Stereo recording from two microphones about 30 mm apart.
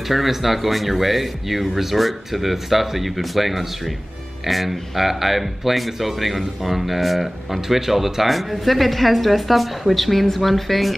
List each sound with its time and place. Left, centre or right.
0.1 s a woman's voice: centre